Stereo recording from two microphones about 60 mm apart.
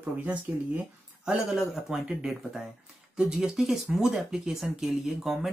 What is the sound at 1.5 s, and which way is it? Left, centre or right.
Speech, centre.